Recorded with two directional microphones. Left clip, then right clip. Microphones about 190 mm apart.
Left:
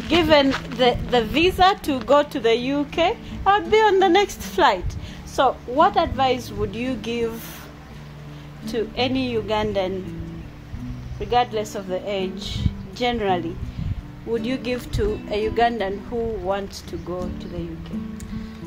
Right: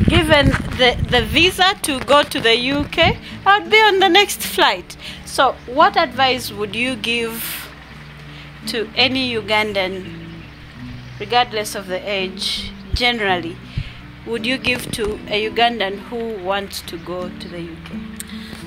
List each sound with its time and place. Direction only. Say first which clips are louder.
0.1 s speech: right 2 dB; 10° right (ahead or behind)
8.6 s speech: right 6 dB; 5° right (ahead or behind)
11.1 s speech: right 3 dB; 5° right (ahead or behind)